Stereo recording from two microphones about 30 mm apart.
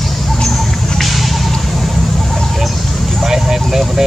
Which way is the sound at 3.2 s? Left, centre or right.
Centre.